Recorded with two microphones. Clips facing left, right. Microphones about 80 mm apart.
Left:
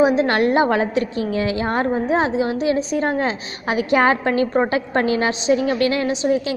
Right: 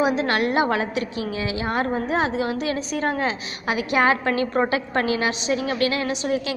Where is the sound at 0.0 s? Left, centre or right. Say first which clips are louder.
Left 5 dB; left.